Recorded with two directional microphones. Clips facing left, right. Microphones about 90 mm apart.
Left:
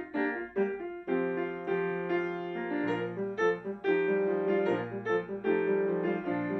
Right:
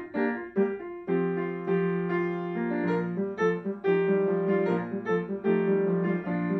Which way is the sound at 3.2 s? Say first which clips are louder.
Right 3 dB; 5° right (ahead or behind).